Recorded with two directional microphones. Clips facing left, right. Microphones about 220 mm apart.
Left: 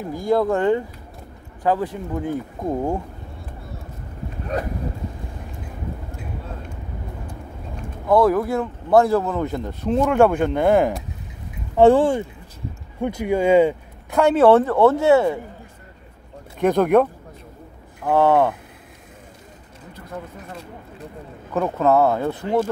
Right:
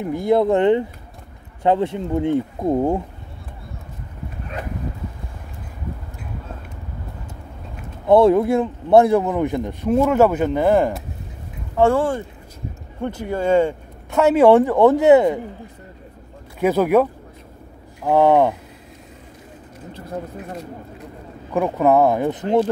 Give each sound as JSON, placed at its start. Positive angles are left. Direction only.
{"t": 0.0, "sound": "speech", "side_deg": -20}
{"t": 4.5, "sound": "dog", "side_deg": 40}
{"t": 8.1, "sound": "a man's voice", "side_deg": -25}
{"t": 11.8, "sound": "speech", "side_deg": 15}
{"t": 14.2, "sound": "a man's voice", "side_deg": -10}
{"t": 16.5, "sound": "a man's voice", "side_deg": -5}
{"t": 19.9, "sound": "speech", "side_deg": -30}
{"t": 21.5, "sound": "a man's voice", "side_deg": -15}